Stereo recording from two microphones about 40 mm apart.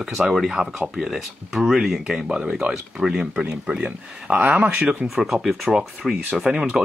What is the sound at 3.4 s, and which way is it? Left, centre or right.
Speech, right.